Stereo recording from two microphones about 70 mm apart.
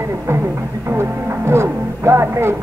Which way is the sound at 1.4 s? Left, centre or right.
Right.